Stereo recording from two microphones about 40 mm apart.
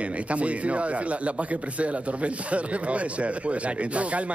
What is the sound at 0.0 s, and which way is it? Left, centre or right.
A man's voice, right.